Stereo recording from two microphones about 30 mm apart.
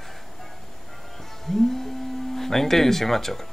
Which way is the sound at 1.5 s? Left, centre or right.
Centre.